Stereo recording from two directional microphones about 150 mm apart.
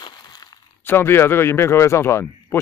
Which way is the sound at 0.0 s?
30° left (ahead or behind).